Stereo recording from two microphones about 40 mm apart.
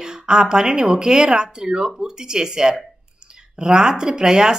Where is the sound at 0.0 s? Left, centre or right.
Centre.